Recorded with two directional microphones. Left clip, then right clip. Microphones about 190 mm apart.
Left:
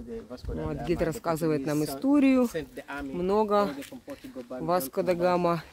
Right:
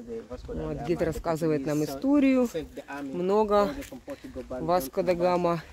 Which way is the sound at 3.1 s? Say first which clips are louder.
Right 1 dB; centre (ahead or behind).